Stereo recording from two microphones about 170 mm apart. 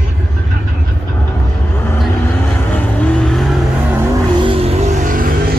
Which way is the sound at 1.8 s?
15° left (ahead or behind).